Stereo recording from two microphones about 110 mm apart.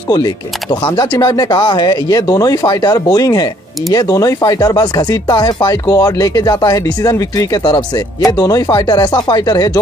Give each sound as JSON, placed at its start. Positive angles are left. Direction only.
{"t": 0.1, "sound": "speech", "side_deg": 40}